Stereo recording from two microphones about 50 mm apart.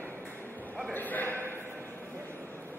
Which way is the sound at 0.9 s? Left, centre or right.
Left.